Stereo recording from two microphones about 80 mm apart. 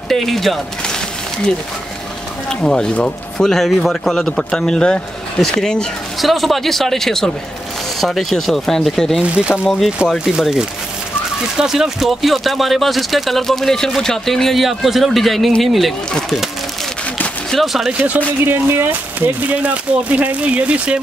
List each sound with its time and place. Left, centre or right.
0.1 s speech: centre
2.6 s a man's voice: centre
9.2 s speech: centre
17.5 s speech: centre
18.4 s speech: right